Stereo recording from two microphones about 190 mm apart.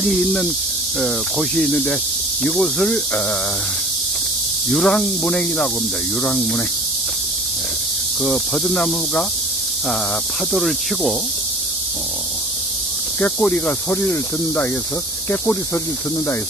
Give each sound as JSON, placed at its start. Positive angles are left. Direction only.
{"t": 0.0, "sound": "speech", "side_deg": 5}
{"t": 4.6, "sound": "speech", "side_deg": 5}
{"t": 8.2, "sound": "speech", "side_deg": 0}
{"t": 10.5, "sound": "speech", "side_deg": 0}
{"t": 13.2, "sound": "speech", "side_deg": 5}